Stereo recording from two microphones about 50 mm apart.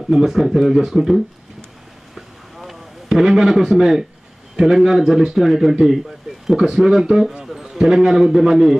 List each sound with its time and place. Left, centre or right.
0.1 s speech: centre
2.1 s a sound: centre
4.6 s a man's voice: centre